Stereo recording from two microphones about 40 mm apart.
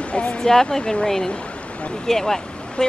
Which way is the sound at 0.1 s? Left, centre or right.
Left.